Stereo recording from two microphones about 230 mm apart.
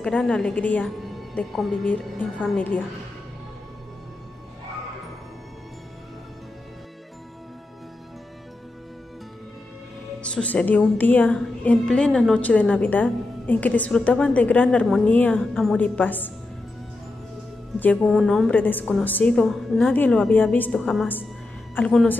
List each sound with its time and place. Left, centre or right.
0.0 s a woman's voice: centre
10.2 s a woman's voice: centre
17.7 s a woman's voice: centre